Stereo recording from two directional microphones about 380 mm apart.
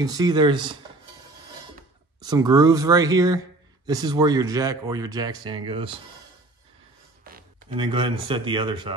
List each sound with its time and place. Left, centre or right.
0.0 s speech: centre
2.2 s speech: centre
7.3 s a sound: right
7.7 s speech: centre